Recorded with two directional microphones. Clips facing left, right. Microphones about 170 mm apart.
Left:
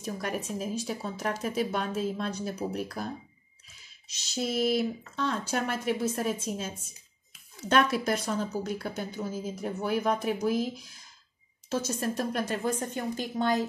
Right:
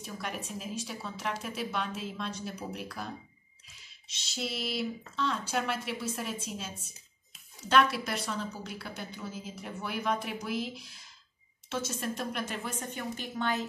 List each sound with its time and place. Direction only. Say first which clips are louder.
0.0 s a woman's voice: left 6 dB; 45° left (ahead or behind)
4.1 s a woman's voice: left 6 dB; 40° left (ahead or behind)